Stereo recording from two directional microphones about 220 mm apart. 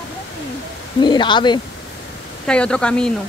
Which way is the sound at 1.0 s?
20° left (ahead or behind).